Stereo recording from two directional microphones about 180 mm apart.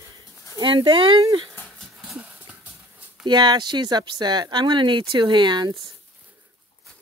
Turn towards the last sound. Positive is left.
turn(degrees=-25)  # may be behind; listen again after turning